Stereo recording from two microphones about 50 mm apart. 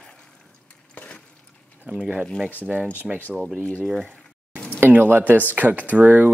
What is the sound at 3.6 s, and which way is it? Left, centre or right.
Speech, left.